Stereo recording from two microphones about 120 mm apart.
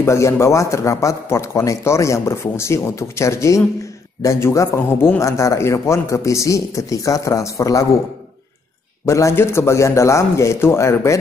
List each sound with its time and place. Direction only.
0.0 s a man's voice: 25° left (ahead or behind)
9.0 s a man's voice: 25° left (ahead or behind)